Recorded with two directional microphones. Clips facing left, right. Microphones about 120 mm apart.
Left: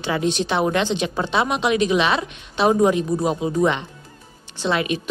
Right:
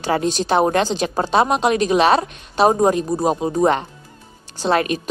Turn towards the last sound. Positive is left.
turn(degrees=-45)  # may be behind; listen again after turning